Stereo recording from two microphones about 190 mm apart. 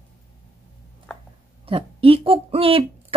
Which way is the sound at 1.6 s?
30° right (ahead or behind).